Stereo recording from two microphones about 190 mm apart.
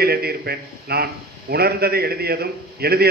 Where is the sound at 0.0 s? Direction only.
55° right (ahead or behind).